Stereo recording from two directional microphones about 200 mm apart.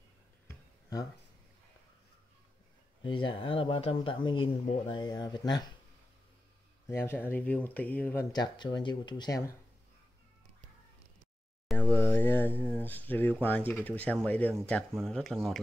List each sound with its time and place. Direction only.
3.0 s speech: 25° left (ahead or behind)
6.9 s speech: 10° left (ahead or behind)
11.6 s speech: 5° left (ahead or behind)